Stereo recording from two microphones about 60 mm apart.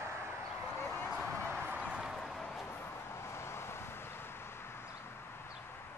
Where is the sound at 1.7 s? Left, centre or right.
Centre.